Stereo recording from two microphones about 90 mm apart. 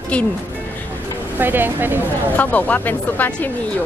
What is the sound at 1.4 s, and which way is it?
Speech, 20° right (ahead or behind).